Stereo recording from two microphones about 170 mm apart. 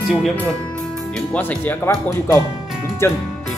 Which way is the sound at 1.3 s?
10° left (ahead or behind).